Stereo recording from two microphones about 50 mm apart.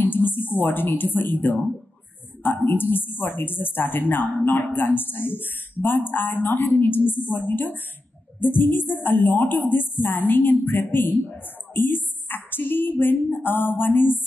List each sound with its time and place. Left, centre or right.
0.0 s a woman's voice: left